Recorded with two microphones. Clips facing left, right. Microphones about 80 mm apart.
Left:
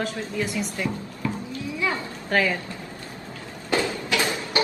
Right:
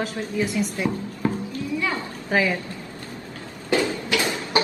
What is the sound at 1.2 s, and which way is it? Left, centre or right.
Clip-clop, right.